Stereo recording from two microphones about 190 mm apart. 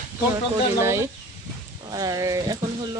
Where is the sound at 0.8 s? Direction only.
15° right (ahead or behind).